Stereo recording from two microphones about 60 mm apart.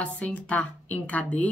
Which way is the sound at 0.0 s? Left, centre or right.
Left.